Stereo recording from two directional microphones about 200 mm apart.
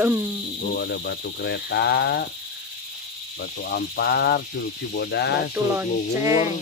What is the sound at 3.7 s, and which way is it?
Speech, 55° left (ahead or behind).